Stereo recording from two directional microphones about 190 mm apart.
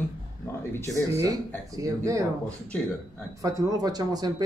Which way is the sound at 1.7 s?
15° right (ahead or behind).